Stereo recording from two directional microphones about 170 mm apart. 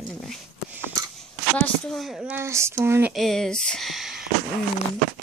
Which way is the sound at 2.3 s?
15° right (ahead or behind).